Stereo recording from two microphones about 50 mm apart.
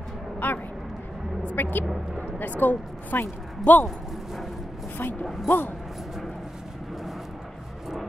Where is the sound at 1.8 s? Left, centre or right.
Centre.